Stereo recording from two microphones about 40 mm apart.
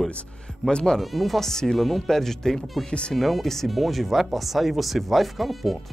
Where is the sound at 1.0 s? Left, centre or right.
Centre.